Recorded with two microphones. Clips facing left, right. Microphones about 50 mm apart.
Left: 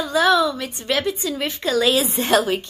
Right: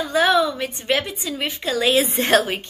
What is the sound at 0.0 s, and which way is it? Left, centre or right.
A woman's voice, right.